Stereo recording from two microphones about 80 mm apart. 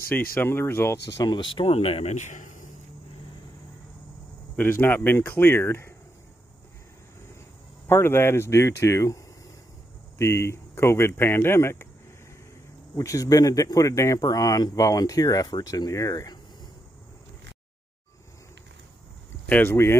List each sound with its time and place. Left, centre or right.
0.1 s speech: left
1.1 s speech: left
4.6 s speech: left
7.9 s speech: left
12.9 s speech: left
19.4 s speech: left